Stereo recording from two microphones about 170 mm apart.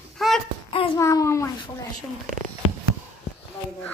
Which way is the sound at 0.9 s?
20° left (ahead or behind).